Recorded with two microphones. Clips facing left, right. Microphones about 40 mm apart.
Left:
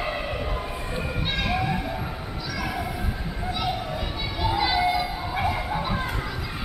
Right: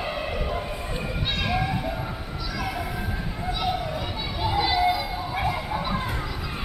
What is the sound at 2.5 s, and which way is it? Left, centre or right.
Children playing, centre.